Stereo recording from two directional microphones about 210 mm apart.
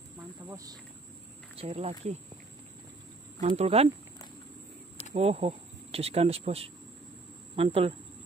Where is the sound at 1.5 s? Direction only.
30° right (ahead or behind).